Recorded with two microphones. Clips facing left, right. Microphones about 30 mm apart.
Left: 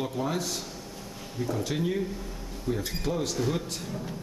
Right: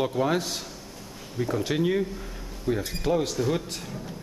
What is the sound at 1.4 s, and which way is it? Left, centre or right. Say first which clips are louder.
Speech: right 4 dB; centre.